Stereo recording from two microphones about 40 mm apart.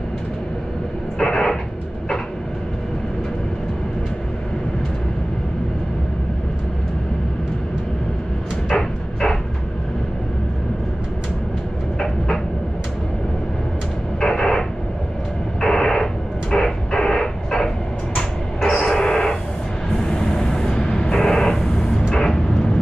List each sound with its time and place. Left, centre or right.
1.2 s a sound: centre
8.7 s a sound: centre
14.2 s radio: centre
15.6 s radio: centre
18.6 s train: centre
20.0 s vehicle: centre